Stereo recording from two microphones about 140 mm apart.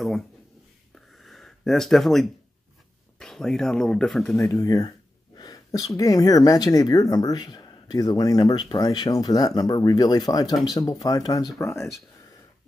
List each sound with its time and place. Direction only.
0.9 s a sound: centre (ahead or behind)
3.2 s speech: 5° left (ahead or behind)
4.4 s speech: 20° left (ahead or behind)
11.7 s speech: centre (ahead or behind)